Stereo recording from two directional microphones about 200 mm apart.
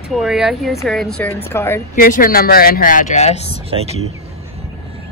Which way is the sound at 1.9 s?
45° left (ahead or behind).